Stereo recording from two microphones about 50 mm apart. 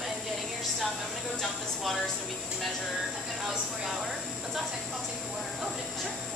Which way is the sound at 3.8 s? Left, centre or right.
Centre.